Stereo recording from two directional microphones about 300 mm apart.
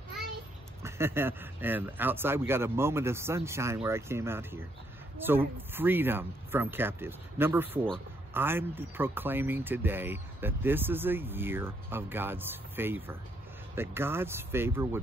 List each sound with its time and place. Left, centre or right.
0.8 s speech: centre